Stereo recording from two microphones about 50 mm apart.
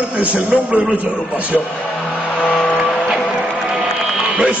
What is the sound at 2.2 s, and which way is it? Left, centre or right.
Vehicle, left.